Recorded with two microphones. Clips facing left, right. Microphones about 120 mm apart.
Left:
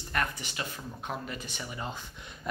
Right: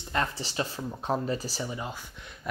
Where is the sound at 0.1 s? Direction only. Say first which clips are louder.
Right 3 dB; 25° right (ahead or behind).